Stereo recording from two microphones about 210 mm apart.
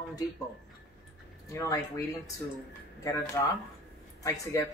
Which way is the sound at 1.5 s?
15° left (ahead or behind).